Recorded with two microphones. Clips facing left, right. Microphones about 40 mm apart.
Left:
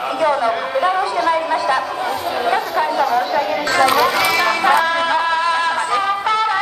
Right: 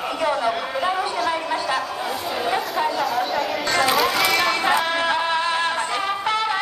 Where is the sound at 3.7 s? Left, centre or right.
Centre.